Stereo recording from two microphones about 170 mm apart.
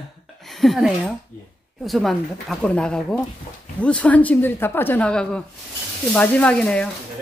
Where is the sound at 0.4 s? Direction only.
Centre (ahead or behind).